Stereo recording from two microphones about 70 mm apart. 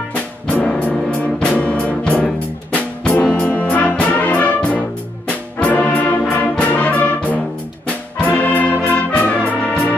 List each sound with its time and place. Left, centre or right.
0.1 s music: centre
4.1 s brass instrument: left